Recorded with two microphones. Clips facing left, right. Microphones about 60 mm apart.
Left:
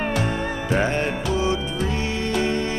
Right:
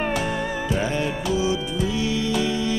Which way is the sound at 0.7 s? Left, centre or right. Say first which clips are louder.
Left 4 dB; left.